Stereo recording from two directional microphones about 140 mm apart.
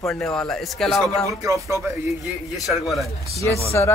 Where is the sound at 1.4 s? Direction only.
20° right (ahead or behind).